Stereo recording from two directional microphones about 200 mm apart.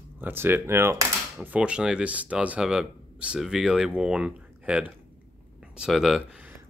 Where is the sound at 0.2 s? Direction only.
10° right (ahead or behind).